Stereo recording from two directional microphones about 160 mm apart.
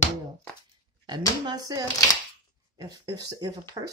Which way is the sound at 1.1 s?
25° right (ahead or behind).